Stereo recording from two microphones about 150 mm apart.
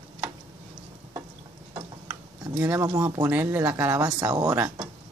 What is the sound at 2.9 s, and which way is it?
Speech, 25° right (ahead or behind).